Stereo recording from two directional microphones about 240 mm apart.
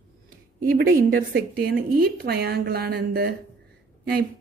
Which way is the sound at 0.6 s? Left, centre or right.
Right.